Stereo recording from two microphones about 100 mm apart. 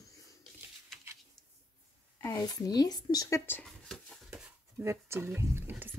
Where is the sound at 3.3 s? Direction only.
25° left (ahead or behind).